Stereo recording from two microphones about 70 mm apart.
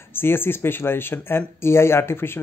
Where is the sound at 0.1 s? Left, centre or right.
Left.